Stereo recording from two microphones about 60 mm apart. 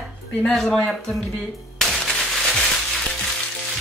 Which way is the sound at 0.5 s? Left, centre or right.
Centre.